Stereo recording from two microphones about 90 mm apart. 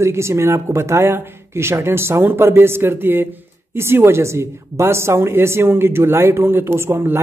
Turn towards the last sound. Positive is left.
turn(degrees=-25)  # may be behind; listen again after turning